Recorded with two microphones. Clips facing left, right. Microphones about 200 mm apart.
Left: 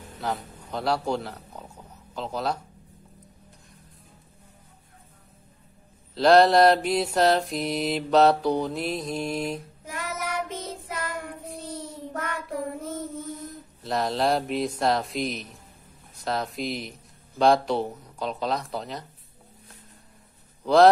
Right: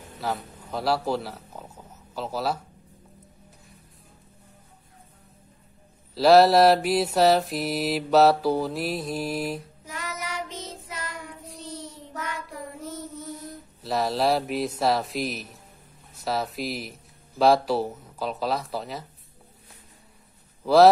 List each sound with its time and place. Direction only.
0.2 s mantra: centre (ahead or behind)
6.1 s mantra: 5° right (ahead or behind)
9.8 s child singing: 55° left (ahead or behind)
13.8 s mantra: 5° right (ahead or behind)
20.6 s mantra: 5° right (ahead or behind)